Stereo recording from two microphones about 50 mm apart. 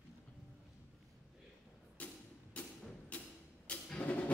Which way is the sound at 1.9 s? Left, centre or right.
Left.